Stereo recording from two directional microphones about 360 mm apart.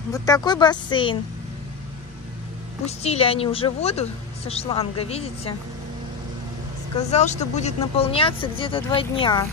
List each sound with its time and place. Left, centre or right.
0.1 s a woman's voice: centre
2.8 s a woman's voice: centre
7.0 s a woman's voice: centre